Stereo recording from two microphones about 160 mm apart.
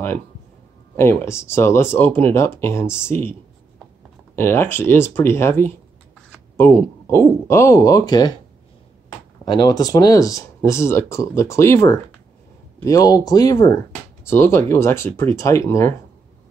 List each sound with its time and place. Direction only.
0.9 s speech: 15° left (ahead or behind)
4.4 s speech: 15° left (ahead or behind)
9.4 s speech: 25° left (ahead or behind)